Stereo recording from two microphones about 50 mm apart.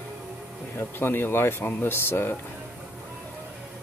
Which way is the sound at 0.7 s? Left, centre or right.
Left.